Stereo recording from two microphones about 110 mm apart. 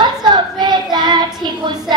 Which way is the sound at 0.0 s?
40° right (ahead or behind).